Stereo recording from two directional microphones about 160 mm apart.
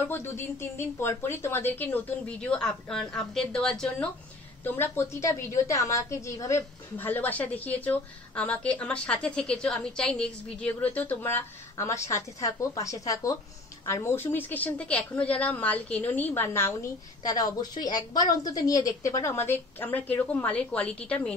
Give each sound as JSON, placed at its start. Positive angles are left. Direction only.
{"t": 0.1, "sound": "a woman's voice", "side_deg": 15}
{"t": 4.7, "sound": "a woman's voice", "side_deg": 15}